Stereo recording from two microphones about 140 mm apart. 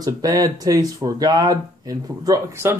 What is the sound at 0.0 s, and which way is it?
Speech, 25° right (ahead or behind).